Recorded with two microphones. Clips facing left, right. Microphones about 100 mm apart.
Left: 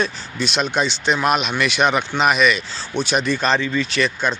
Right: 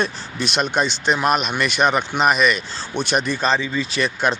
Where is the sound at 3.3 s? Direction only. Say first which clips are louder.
Left 1 dB; 5° right (ahead or behind).